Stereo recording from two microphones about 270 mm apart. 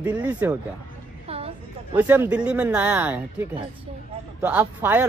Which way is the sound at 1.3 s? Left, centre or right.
Right.